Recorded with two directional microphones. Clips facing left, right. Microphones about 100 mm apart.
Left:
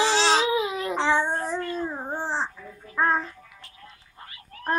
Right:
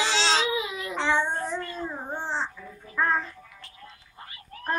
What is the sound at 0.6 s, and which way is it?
Baby cry, 45° left (ahead or behind).